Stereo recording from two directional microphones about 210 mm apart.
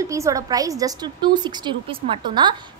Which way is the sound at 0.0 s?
15° right (ahead or behind).